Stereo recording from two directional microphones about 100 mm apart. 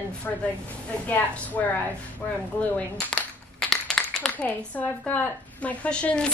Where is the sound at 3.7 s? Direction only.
5° left (ahead or behind).